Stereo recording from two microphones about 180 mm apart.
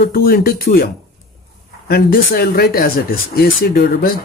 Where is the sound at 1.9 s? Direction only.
60° left (ahead or behind).